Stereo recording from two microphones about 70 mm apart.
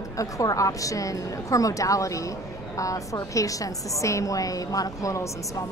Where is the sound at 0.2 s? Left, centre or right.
Left.